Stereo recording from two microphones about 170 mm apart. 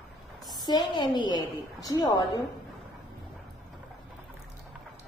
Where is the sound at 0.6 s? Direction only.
25° left (ahead or behind).